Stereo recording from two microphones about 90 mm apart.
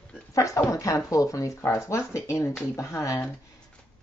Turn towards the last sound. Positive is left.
turn(degrees=35)  # may be behind; listen again after turning